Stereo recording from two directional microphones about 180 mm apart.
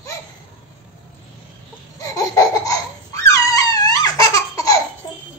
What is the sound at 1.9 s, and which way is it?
Laughter, 20° left (ahead or behind).